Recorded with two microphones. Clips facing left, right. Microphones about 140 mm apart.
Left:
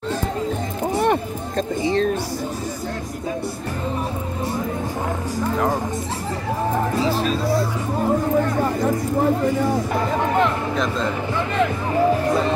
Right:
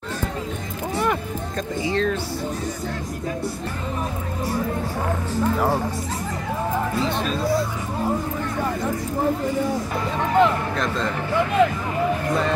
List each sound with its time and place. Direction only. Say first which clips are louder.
0.9 s music: left 4 dB; 40° left (ahead or behind)
1.8 s speech: left 3 dB; 25° left (ahead or behind)
7.0 s speech: left 3 dB; centre (ahead or behind)
10.4 s a sound: right 1 dB; centre (ahead or behind)